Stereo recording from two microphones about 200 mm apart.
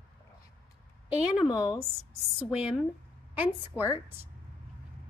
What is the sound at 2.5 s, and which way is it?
Speech, 5° right (ahead or behind).